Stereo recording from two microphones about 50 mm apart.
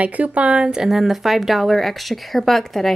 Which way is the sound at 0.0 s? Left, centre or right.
Right.